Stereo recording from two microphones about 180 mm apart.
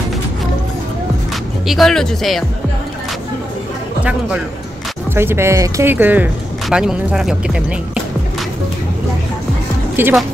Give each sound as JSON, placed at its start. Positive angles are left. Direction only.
{"t": 1.7, "sound": "speech", "side_deg": 0}
{"t": 5.1, "sound": "speech", "side_deg": -15}
{"t": 10.0, "sound": "speech", "side_deg": -10}